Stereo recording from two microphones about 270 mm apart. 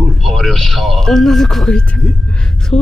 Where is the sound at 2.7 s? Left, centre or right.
Left.